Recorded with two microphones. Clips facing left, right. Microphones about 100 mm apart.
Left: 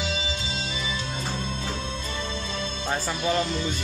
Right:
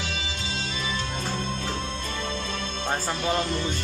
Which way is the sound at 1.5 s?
55° right (ahead or behind).